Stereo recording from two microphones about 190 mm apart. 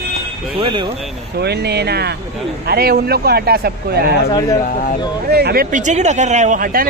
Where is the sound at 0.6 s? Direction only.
25° right (ahead or behind).